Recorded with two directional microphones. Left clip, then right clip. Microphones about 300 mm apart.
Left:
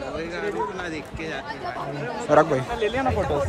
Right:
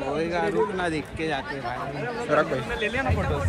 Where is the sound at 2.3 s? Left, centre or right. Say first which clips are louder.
Left 5 dB; left.